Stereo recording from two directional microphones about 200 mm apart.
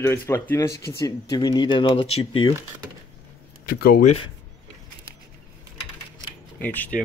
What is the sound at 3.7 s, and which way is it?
Speech, 50° left (ahead or behind).